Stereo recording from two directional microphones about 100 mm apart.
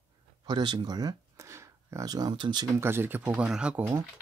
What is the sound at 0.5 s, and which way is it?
Speech, 45° right (ahead or behind).